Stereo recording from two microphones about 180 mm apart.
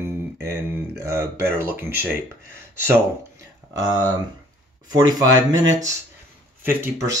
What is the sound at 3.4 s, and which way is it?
Speech, 20° right (ahead or behind).